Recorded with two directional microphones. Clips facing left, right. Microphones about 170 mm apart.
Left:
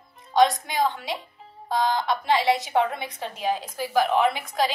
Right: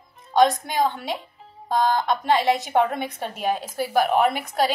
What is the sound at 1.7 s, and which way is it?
A woman's voice, 50° right (ahead or behind).